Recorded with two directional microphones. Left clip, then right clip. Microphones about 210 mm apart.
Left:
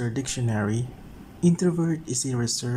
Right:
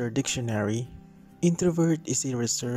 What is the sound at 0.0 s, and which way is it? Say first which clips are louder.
Speech: right 1 dB; 40° right (ahead or behind).